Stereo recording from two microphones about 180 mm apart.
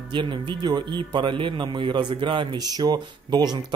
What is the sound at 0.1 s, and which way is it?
Speech, 25° right (ahead or behind).